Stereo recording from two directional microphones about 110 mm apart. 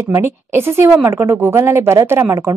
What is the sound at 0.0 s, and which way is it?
A woman's voice, 25° right (ahead or behind).